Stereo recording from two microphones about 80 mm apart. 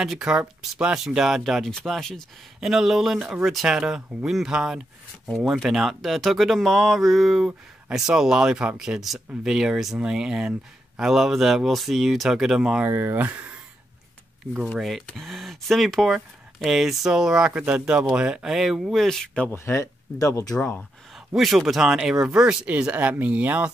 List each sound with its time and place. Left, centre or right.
0.0 s speech: centre
12.8 s speech: right
14.8 s speech: centre
19.5 s speech: left
20.5 s speech: centre
21.4 s speech: centre